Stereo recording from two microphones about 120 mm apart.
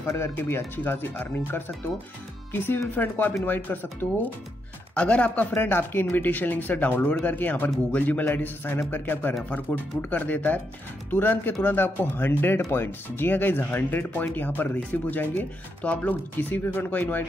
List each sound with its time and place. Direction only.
0.0 s speech: 20° left (ahead or behind)